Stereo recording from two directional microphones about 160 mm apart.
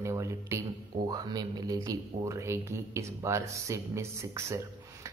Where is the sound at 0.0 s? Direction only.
20° right (ahead or behind).